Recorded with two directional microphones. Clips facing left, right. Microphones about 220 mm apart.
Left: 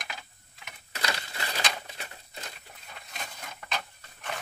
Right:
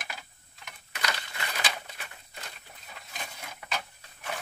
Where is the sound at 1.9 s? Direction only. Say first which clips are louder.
Left 3 dB; 30° left (ahead or behind).